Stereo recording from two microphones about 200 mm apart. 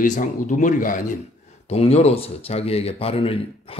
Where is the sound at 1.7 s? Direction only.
30° left (ahead or behind).